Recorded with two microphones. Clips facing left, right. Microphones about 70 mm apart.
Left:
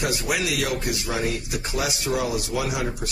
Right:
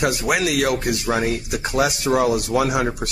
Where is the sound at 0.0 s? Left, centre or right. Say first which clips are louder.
Right 5 dB; right.